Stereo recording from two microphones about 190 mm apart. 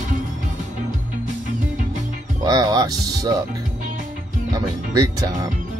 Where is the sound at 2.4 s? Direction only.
20° right (ahead or behind).